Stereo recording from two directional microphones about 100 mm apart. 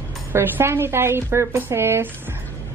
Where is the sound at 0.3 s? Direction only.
20° right (ahead or behind).